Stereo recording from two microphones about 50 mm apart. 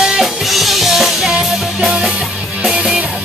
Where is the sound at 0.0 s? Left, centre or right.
Centre.